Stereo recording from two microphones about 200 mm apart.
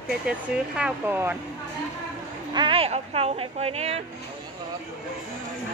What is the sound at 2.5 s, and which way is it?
Speech, 25° right (ahead or behind).